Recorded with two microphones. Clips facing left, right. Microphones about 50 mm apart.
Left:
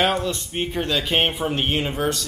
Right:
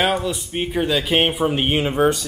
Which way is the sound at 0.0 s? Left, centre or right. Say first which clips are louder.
Right 1 dB; centre.